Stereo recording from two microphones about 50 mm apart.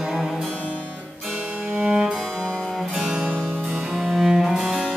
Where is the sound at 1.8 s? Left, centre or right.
Centre.